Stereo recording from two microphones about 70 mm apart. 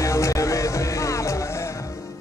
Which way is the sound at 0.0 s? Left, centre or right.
Left.